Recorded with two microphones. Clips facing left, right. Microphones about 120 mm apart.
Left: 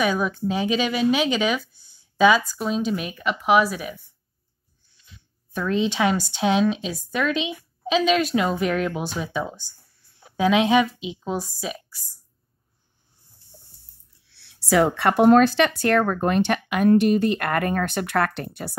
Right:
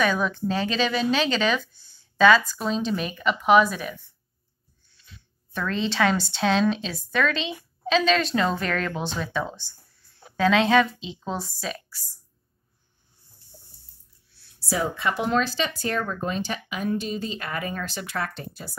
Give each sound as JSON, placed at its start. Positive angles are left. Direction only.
{"t": 0.0, "sound": "speech", "side_deg": 10}
{"t": 5.1, "sound": "speech", "side_deg": 15}
{"t": 14.2, "sound": "speech", "side_deg": 85}